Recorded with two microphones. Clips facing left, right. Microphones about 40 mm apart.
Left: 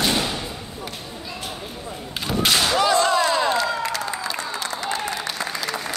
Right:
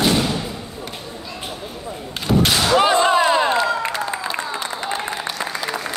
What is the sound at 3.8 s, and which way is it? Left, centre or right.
Applause, right.